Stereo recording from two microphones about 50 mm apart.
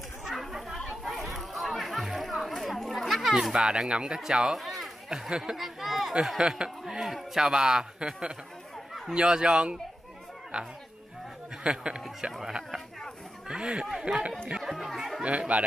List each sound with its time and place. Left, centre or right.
0.2 s chatter: centre
4.6 s run: centre
5.3 s a sound: centre
6.2 s speech: centre
7.4 s speech: centre
11.6 s speech: centre
13.5 s speech: centre
14.6 s speech: centre
15.2 s speech: right